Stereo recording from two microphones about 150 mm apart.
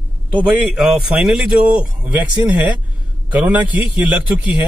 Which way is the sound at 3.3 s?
10° right (ahead or behind).